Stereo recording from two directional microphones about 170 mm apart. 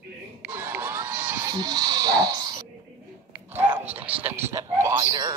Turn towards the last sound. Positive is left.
turn(degrees=-20)  # may be behind; listen again after turning